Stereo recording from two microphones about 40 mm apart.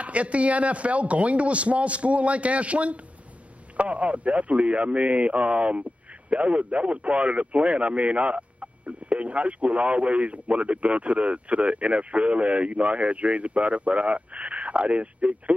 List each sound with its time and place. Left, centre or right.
0.0 s speech: right